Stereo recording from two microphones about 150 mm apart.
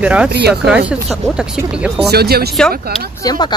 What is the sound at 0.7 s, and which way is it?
Speech, 10° right (ahead or behind).